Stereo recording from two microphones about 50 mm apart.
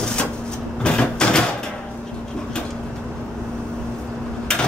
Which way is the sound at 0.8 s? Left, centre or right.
Centre.